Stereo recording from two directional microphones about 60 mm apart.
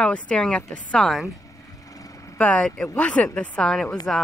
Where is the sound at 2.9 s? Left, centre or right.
Centre.